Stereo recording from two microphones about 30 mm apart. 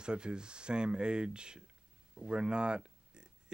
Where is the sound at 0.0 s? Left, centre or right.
Right.